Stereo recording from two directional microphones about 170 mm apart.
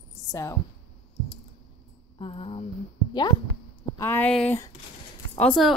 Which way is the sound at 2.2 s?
30° left (ahead or behind).